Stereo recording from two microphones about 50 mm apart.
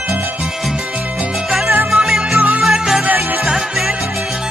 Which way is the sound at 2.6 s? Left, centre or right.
Centre.